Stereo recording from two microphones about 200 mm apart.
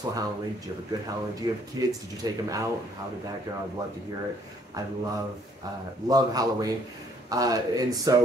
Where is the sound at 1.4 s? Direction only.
20° right (ahead or behind).